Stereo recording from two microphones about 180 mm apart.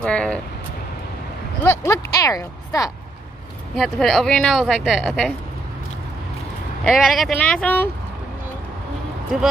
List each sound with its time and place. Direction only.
0.0 s speech: 5° left (ahead or behind)
1.6 s speech: 15° left (ahead or behind)
3.7 s speech: centre (ahead or behind)
6.8 s speech: centre (ahead or behind)